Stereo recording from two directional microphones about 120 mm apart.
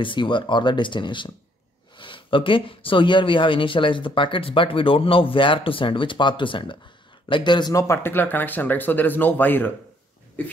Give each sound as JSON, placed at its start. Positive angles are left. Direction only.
{"t": 0.0, "sound": "speech", "side_deg": 40}
{"t": 7.9, "sound": "speech", "side_deg": 20}